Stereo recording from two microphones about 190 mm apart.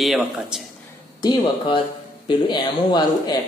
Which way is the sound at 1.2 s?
25° left (ahead or behind).